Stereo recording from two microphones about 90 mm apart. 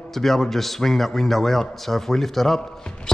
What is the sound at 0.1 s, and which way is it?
A man's voice, centre (ahead or behind).